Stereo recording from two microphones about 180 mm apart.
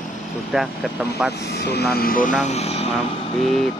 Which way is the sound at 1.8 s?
60° left (ahead or behind).